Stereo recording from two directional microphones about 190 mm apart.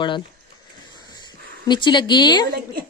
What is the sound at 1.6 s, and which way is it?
Speech, 25° left (ahead or behind).